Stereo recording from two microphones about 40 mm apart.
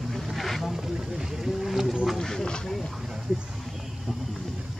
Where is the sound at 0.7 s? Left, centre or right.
Centre.